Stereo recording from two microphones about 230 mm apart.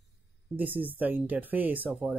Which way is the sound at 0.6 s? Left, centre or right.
Centre.